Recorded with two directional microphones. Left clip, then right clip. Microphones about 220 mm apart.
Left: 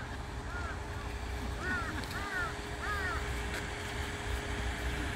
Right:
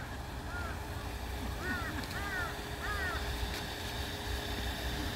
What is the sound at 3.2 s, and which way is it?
Vehicle, 35° right (ahead or behind).